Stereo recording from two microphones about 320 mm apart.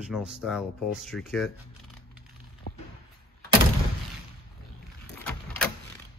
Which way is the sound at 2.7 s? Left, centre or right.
Left.